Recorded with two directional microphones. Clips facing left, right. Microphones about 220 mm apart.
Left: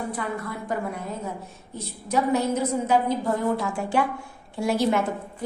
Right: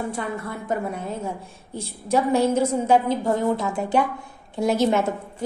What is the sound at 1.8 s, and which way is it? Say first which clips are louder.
A woman's voice: right 3 dB; 30° right (ahead or behind).